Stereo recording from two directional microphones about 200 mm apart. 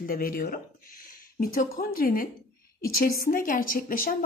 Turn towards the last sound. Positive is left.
turn(degrees=45)  # may be behind; listen again after turning